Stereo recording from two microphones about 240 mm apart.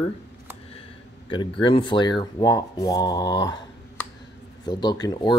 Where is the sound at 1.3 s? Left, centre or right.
Centre.